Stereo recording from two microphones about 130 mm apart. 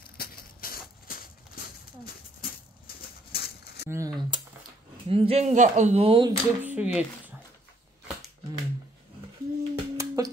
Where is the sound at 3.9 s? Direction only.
25° right (ahead or behind).